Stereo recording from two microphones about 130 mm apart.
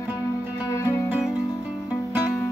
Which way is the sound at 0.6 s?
25° left (ahead or behind).